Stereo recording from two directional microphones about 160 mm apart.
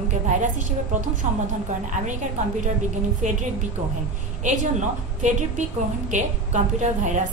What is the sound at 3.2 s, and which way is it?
Speech, 50° right (ahead or behind).